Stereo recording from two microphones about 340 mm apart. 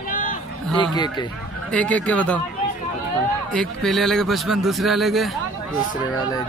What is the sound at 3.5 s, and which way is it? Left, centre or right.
A man's voice, centre.